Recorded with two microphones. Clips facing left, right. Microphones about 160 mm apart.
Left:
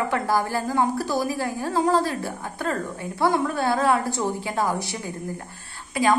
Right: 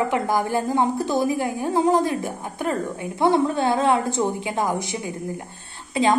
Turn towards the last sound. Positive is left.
turn(degrees=-25)  # may be behind; listen again after turning